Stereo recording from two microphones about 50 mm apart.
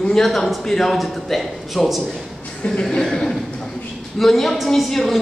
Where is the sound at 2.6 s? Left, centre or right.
Centre.